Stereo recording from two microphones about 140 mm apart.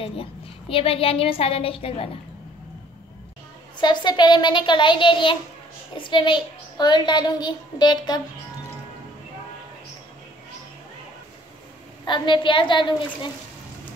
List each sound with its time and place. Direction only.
0.0 s a woman's voice: 40° left (ahead or behind)
3.8 s a child's voice: 30° left (ahead or behind)
12.0 s a child's voice: 35° left (ahead or behind)